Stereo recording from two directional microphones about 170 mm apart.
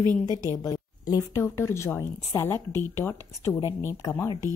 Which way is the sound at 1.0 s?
20° left (ahead or behind).